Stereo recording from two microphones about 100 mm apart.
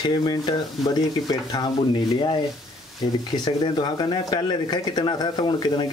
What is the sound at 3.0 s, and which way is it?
Speech, 50° left (ahead or behind).